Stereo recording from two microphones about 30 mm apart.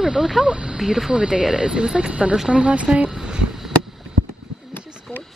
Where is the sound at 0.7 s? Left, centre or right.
Centre.